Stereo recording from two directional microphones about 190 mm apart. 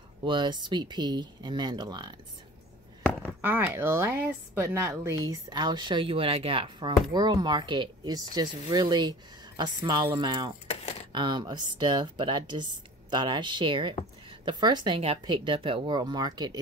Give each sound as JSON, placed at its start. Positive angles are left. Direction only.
{"t": 0.2, "sound": "speech", "side_deg": -25}
{"t": 3.3, "sound": "a woman's voice", "side_deg": -10}